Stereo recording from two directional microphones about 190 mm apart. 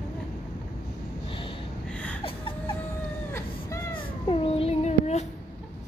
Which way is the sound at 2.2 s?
30° left (ahead or behind).